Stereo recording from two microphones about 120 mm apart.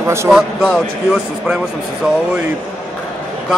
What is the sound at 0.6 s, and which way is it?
Speech, 5° left (ahead or behind).